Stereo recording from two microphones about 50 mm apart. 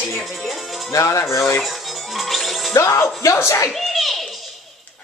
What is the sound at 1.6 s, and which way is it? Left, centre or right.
Music, centre.